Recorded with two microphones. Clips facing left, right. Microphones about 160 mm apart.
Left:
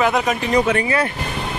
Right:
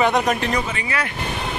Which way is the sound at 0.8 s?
30° left (ahead or behind).